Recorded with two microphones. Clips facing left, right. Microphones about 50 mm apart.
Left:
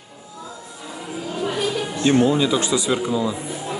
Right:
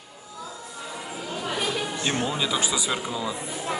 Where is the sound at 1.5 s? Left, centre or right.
Centre.